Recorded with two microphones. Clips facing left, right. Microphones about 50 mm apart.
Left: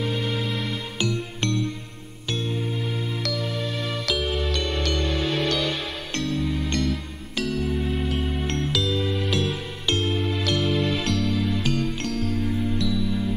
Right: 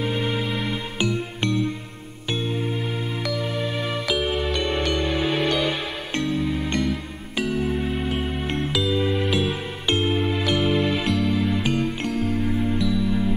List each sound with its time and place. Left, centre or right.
0.0 s music: centre